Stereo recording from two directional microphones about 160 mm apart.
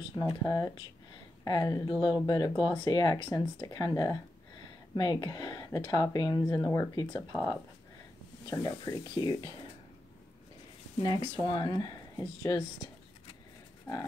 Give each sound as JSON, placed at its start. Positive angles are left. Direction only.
{"t": 0.1, "sound": "speech", "side_deg": 20}
{"t": 11.0, "sound": "speech", "side_deg": 30}